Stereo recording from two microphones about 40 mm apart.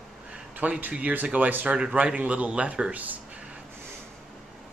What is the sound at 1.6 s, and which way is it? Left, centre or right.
Speech, right.